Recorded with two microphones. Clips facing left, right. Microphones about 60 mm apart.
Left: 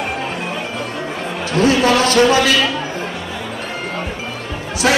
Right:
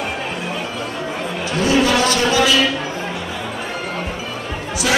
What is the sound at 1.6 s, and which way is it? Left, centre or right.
Speech, left.